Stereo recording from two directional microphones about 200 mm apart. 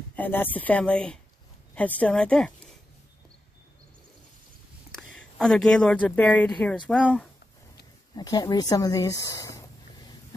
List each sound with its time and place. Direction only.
0.1 s a woman's voice: 10° left (ahead or behind)
4.9 s speech: 5° left (ahead or behind)
8.1 s speech: 20° left (ahead or behind)